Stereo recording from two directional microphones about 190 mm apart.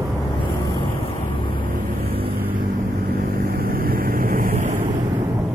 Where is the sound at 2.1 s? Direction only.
30° right (ahead or behind).